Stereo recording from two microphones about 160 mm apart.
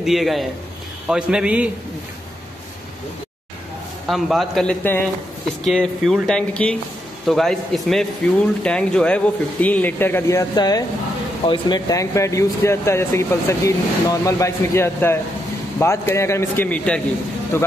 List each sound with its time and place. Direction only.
0.0 s speech: centre (ahead or behind)
4.1 s speech: centre (ahead or behind); by 11.8 s 35° left (ahead or behind)
11.9 s speech: 20° left (ahead or behind)